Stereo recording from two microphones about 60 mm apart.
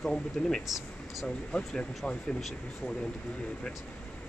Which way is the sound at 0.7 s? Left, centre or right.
Centre.